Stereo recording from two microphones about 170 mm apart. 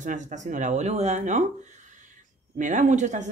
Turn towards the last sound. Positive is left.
turn(degrees=-45)  # may be behind; listen again after turning